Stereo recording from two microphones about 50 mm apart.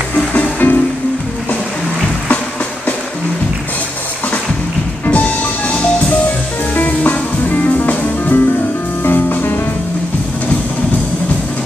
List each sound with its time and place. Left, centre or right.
0.3 s music: left
5.0 s music: left